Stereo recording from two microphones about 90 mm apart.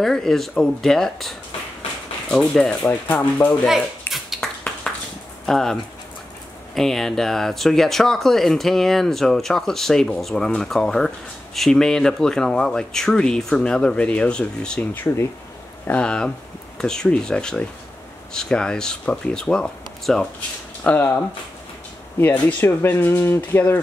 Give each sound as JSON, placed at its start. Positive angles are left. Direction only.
{"t": 0.0, "sound": "speech", "side_deg": 5}
{"t": 2.3, "sound": "speech", "side_deg": 5}
{"t": 2.9, "sound": "speech", "side_deg": 20}
{"t": 4.1, "sound": "finger snapping", "side_deg": 0}
{"t": 4.9, "sound": "a sound", "side_deg": 10}
{"t": 5.5, "sound": "speech", "side_deg": 5}
{"t": 20.8, "sound": "speech", "side_deg": 20}
{"t": 22.2, "sound": "speech", "side_deg": 20}